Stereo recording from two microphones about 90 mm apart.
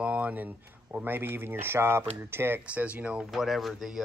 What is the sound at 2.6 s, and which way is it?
Speech, 15° right (ahead or behind).